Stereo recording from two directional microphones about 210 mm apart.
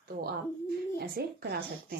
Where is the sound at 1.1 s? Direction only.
50° right (ahead or behind).